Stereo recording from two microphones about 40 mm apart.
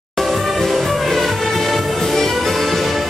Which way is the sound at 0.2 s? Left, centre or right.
Centre.